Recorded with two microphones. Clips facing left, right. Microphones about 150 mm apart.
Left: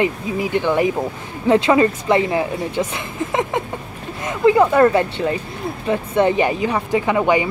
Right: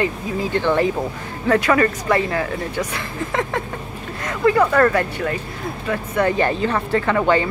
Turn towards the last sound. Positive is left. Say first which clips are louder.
# left 1 dB
turn(degrees=15)  # may be behind; listen again after turning